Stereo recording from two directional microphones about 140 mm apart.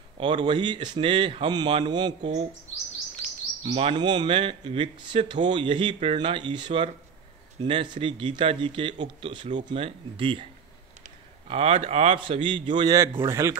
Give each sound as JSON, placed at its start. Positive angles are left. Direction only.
{"t": 0.2, "sound": "speech", "side_deg": -35}
{"t": 3.6, "sound": "speech", "side_deg": -40}
{"t": 12.2, "sound": "speech", "side_deg": -35}